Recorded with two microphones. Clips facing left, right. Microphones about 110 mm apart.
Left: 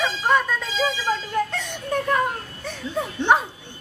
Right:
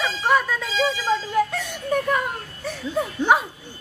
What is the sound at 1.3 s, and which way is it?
Whimper, centre (ahead or behind).